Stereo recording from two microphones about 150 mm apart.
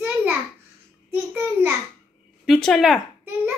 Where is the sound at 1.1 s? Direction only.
15° right (ahead or behind).